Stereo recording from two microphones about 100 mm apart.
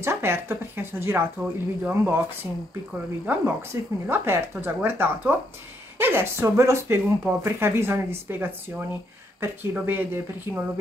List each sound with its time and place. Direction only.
0.0 s speech: 25° right (ahead or behind)
3.3 s speech: 20° right (ahead or behind)